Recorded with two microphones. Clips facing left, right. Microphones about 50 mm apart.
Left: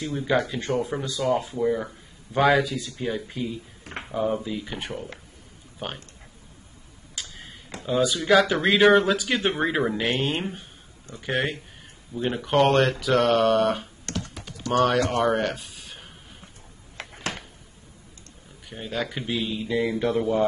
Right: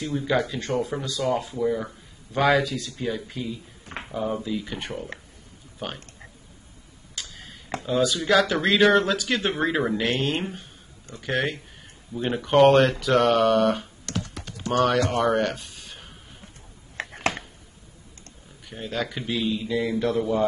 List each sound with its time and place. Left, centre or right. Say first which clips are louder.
0.0 s speech: right 1 dB; centre
0.3 s speech: left 1 dB; centre
7.2 s tick-tock: even; centre
7.8 s speech: even; centre
18.7 s speech: even; centre